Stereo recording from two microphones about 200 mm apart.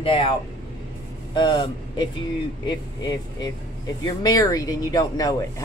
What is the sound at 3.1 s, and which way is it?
Speech, 20° left (ahead or behind).